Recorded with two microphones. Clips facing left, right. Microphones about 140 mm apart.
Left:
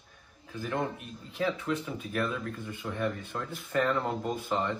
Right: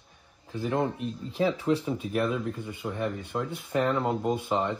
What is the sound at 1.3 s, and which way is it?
Speech, 35° right (ahead or behind).